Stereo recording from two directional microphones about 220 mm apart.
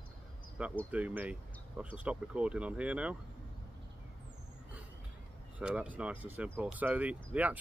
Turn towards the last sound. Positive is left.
turn(degrees=-5)  # may be behind; listen again after turning